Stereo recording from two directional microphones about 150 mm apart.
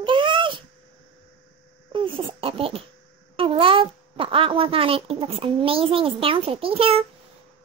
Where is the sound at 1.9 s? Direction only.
35° right (ahead or behind).